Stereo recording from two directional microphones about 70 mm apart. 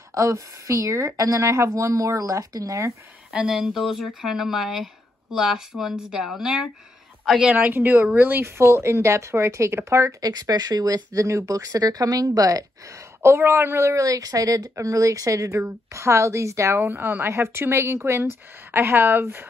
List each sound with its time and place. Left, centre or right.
0.1 s speech: right
3.3 s speech: centre
7.5 s speech: right
10.2 s speech: right
11.1 s speech: right
15.6 s speech: right
16.7 s speech: right